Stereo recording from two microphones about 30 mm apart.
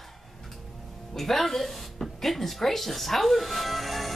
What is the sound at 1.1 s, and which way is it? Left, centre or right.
Speech, centre.